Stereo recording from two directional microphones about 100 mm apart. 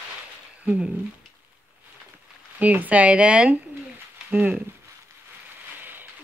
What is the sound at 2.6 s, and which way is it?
Speech, 15° right (ahead or behind).